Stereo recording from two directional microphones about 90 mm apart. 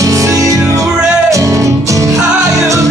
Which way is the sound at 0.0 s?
40° right (ahead or behind).